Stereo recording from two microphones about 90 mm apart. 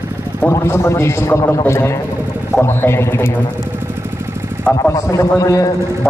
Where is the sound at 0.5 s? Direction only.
30° left (ahead or behind).